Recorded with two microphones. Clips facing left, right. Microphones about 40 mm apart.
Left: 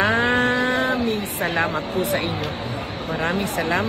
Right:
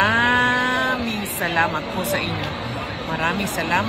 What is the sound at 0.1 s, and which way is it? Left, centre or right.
Cattle, right.